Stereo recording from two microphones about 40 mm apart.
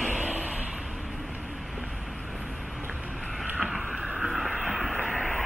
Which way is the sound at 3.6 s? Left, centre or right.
Centre.